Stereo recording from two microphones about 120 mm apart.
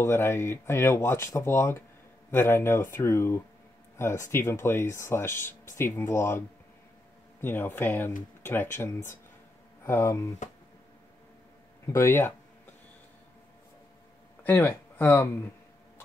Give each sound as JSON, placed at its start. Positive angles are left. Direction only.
{"t": 0.0, "sound": "speech", "side_deg": 20}
{"t": 7.4, "sound": "speech", "side_deg": 15}
{"t": 11.8, "sound": "speech", "side_deg": 25}
{"t": 14.4, "sound": "speech", "side_deg": 15}